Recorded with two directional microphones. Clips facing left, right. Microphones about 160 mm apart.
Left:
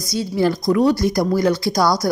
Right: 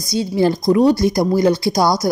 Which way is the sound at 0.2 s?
25° right (ahead or behind).